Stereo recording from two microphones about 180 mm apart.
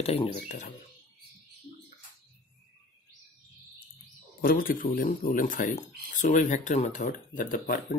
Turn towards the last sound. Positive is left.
turn(degrees=50)  # may be behind; listen again after turning